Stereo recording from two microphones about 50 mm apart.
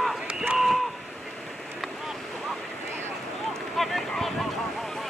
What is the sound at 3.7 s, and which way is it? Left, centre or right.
Boat, centre.